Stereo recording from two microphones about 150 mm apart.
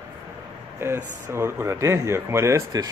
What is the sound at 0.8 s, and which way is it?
Speech, 15° right (ahead or behind).